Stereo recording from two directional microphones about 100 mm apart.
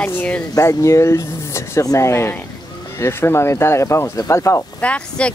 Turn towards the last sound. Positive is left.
turn(degrees=10)  # may be behind; listen again after turning